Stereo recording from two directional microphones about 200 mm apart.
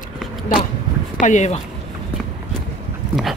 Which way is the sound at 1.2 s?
35° left (ahead or behind).